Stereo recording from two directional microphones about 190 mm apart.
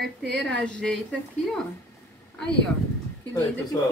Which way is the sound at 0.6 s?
5° left (ahead or behind).